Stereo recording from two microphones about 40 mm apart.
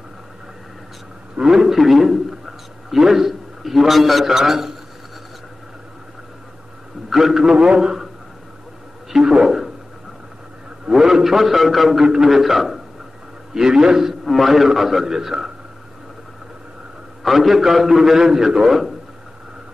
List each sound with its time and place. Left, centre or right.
1.4 s a man's voice: centre
7.1 s a man's voice: centre
7.5 s a man's voice: right
9.1 s a man's voice: centre
10.9 s a man's voice: centre
12.0 s a man's voice: centre
17.2 s a man's voice: centre